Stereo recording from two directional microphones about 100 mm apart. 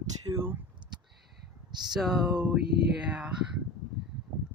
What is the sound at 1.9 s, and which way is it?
Speech, 5° right (ahead or behind).